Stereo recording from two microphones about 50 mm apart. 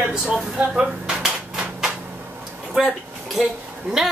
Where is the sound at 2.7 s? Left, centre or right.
Centre.